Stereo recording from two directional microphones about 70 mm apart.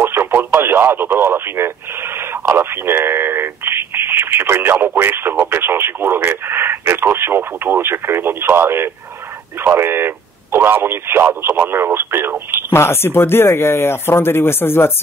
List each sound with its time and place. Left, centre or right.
0.0 s radio: right
2.5 s speech: right
12.7 s speech: left